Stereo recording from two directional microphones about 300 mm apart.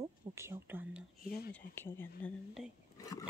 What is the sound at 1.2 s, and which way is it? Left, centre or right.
Speech, left.